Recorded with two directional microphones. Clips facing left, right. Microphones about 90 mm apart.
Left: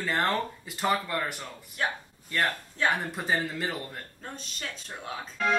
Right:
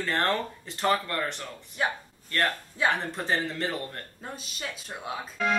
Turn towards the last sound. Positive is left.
turn(degrees=-5)  # may be behind; listen again after turning